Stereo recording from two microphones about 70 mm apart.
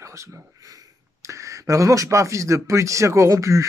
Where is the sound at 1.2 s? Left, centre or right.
Right.